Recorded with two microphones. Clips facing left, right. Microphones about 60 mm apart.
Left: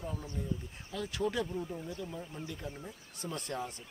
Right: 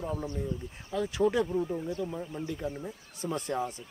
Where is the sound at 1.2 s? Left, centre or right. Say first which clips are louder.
Right 7 dB; centre.